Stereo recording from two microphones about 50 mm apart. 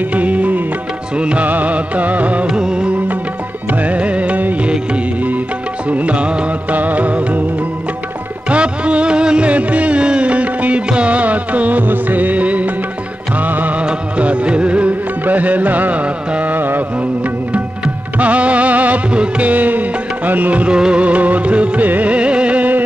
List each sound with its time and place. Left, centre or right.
0.1 s music: right
2.4 s music: centre; by 4.6 s right
5.9 s music: right
8.5 s music: right
16.5 s music: right
18.2 s music: right
20.6 s music: centre